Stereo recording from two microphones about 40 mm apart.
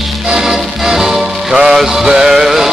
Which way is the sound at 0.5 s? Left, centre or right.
Centre.